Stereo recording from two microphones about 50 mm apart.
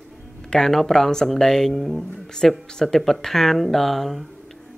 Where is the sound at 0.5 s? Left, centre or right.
Centre.